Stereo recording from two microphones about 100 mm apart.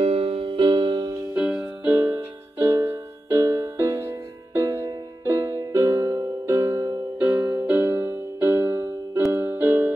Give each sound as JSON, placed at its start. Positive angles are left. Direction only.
{"t": 0.0, "sound": "music", "side_deg": -75}
{"t": 1.3, "sound": "music", "side_deg": -15}
{"t": 1.9, "sound": "music", "side_deg": -25}